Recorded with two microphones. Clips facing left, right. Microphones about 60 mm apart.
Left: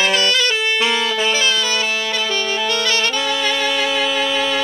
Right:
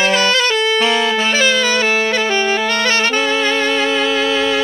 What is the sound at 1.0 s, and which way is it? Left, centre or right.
Music, right.